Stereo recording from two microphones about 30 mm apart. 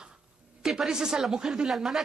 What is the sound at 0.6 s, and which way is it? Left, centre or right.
Speech, centre.